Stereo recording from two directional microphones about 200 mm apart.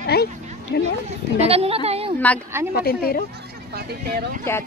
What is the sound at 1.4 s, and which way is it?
Speech, 30° right (ahead or behind).